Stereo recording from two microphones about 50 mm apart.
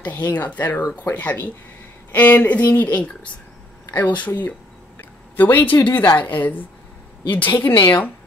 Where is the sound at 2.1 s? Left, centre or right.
Left.